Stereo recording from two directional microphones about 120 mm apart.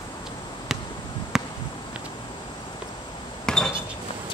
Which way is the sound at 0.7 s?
Centre (ahead or behind).